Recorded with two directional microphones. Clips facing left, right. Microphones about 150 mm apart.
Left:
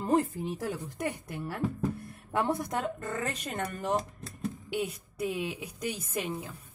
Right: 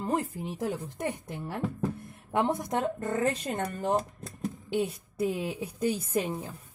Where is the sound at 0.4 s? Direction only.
15° right (ahead or behind).